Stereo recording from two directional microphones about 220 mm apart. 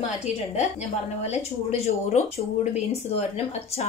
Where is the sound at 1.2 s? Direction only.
30° left (ahead or behind).